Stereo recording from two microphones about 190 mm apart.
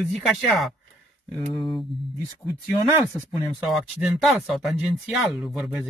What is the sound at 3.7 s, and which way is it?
Speech, centre (ahead or behind).